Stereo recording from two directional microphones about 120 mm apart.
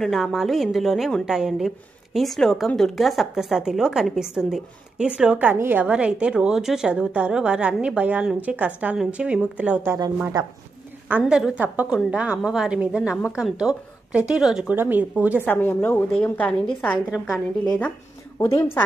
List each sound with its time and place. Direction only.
0.0 s a woman's voice: centre (ahead or behind)
11.1 s a woman's voice: 10° right (ahead or behind)
15.4 s a woman's voice: 20° left (ahead or behind)
17.1 s a woman's voice: centre (ahead or behind)